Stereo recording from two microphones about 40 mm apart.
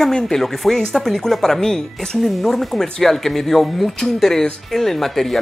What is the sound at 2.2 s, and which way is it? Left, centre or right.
Speech, centre.